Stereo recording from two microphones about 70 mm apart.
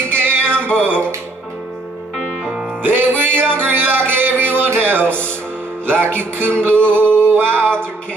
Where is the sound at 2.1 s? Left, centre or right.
Centre.